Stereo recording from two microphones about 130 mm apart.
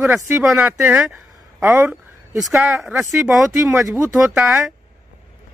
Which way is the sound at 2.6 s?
5° right (ahead or behind).